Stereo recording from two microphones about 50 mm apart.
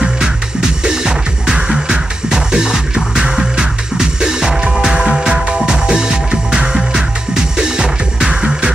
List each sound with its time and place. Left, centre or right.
0.0 s music: centre